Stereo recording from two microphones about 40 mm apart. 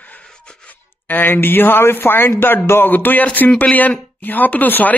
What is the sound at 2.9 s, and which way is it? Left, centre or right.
Speech, left.